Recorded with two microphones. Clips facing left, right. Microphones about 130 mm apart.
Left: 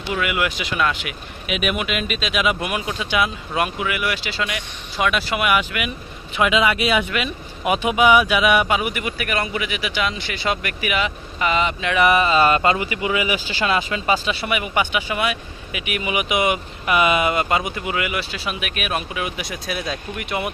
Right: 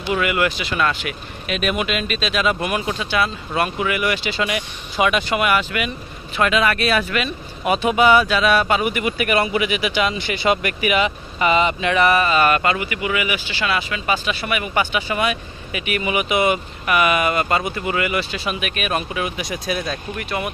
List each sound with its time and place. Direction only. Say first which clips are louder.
0.1 s speech: right 3 dB; centre (ahead or behind)
12.0 s speech: left 1 dB; 15° left (ahead or behind); by 20.0 s centre (ahead or behind)
20.2 s speech: left 1 dB; 20° left (ahead or behind)